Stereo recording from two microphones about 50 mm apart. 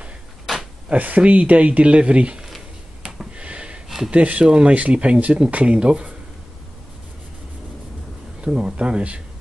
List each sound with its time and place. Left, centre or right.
0.8 s speech: right
3.0 s a sound: centre
4.1 s speech: right
8.4 s speech: centre